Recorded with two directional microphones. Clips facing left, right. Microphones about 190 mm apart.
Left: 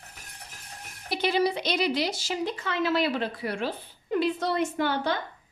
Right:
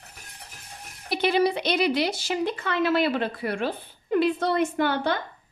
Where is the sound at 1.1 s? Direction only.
60° right (ahead or behind).